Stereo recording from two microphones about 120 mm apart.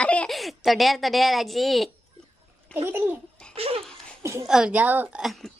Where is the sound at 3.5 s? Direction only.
55° right (ahead or behind).